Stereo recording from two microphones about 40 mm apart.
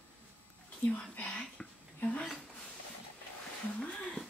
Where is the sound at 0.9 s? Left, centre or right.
Left.